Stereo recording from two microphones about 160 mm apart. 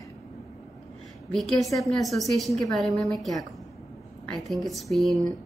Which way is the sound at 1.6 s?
Centre (ahead or behind).